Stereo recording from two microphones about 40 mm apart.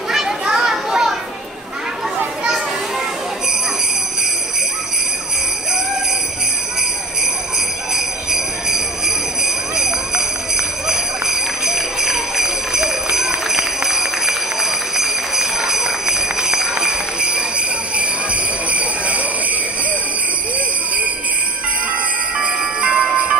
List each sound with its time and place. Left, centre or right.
0.5 s children playing: centre
7.9 s jingle bell: centre
17.9 s jingle bell: right
22.4 s music: right